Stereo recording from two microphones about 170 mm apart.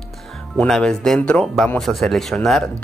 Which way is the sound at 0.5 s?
5° left (ahead or behind).